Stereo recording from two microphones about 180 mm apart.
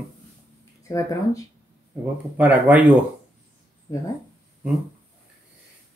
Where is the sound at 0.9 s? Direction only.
20° left (ahead or behind).